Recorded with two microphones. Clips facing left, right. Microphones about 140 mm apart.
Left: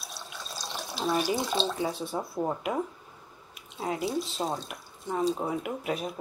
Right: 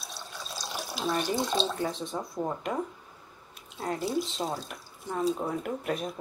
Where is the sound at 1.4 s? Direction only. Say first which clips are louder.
Even; centre (ahead or behind).